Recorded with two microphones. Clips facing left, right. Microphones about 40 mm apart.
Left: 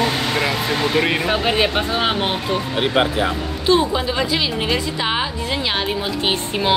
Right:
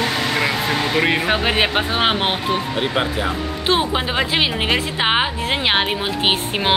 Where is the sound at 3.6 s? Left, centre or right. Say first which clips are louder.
Left 2 dB; right.